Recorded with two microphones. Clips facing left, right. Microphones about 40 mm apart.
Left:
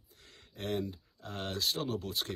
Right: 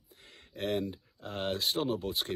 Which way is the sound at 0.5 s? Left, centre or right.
Right.